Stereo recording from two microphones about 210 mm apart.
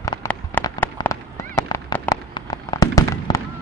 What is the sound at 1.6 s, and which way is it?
Fireworks, 15° left (ahead or behind).